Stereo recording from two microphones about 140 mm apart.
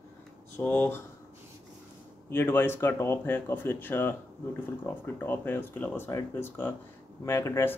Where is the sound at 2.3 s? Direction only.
15° left (ahead or behind).